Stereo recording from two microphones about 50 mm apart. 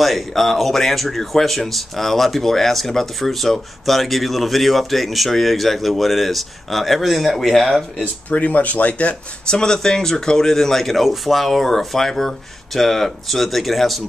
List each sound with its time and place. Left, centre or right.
0.0 s speech: centre
8.0 s speech: left
9.5 s speech: centre